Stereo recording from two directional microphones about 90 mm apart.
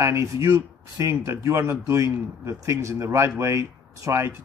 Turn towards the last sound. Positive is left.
turn(degrees=-30)  # may be behind; listen again after turning